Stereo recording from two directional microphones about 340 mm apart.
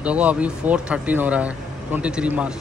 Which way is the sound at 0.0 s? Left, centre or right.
Centre.